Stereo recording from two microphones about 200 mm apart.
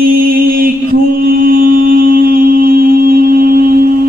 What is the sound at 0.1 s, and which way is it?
Mantra, 45° right (ahead or behind).